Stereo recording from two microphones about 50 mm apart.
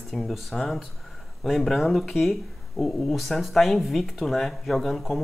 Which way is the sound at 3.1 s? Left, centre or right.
Centre.